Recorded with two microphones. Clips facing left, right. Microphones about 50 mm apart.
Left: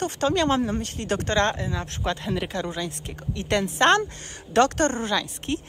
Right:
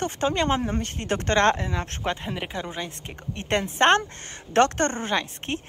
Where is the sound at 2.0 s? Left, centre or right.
Right.